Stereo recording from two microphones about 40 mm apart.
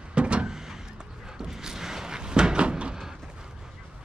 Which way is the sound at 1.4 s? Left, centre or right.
Centre.